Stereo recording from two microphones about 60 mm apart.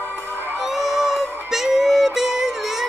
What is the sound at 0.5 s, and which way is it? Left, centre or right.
Music, centre.